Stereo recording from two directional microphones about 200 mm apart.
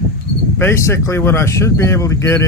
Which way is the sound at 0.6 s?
15° left (ahead or behind).